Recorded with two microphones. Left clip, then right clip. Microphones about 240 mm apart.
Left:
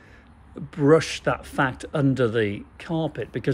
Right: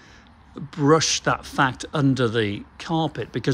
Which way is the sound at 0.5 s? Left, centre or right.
Centre.